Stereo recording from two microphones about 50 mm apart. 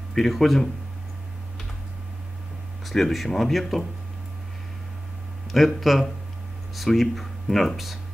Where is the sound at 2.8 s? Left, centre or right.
Centre.